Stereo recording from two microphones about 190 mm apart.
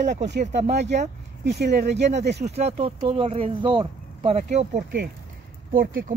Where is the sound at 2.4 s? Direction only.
35° right (ahead or behind).